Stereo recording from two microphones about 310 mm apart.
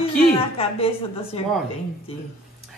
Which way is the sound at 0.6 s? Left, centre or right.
Centre.